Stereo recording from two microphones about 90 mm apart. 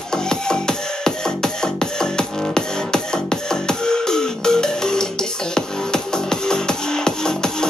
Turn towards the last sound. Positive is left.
turn(degrees=5)  # may be behind; listen again after turning